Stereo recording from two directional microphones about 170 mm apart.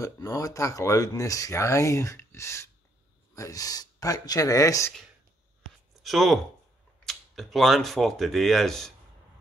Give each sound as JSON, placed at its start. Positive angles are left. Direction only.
{"t": 0.0, "sound": "speech", "side_deg": 20}
{"t": 6.0, "sound": "speech", "side_deg": 0}